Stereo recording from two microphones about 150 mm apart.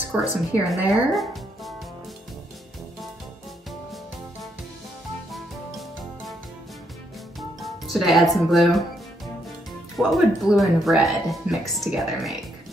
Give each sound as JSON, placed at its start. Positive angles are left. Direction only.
{"t": 0.1, "sound": "a woman's voice", "side_deg": -10}
{"t": 0.7, "sound": "speech", "side_deg": 0}
{"t": 5.3, "sound": "music", "side_deg": 0}
{"t": 7.3, "sound": "music", "side_deg": 0}
{"t": 9.9, "sound": "speech", "side_deg": 0}